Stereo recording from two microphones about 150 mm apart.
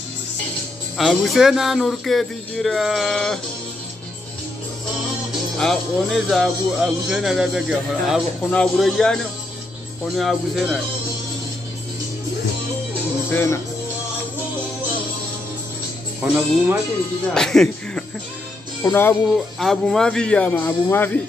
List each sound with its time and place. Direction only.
0.9 s speech: centre (ahead or behind)
5.6 s speech: centre (ahead or behind)
13.3 s speech: 15° left (ahead or behind)
16.2 s speech: 5° right (ahead or behind)
17.3 s speech: 5° left (ahead or behind)
18.8 s speech: 15° left (ahead or behind)
19.3 s speech: centre (ahead or behind)